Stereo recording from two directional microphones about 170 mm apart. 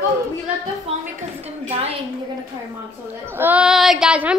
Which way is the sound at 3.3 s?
10° right (ahead or behind).